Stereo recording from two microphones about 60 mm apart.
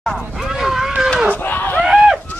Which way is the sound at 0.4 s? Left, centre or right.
Centre.